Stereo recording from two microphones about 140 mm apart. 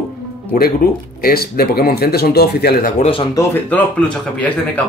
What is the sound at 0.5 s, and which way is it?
Speech, 90° left.